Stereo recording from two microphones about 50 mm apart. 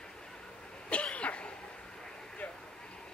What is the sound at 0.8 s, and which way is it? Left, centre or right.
Cough, left.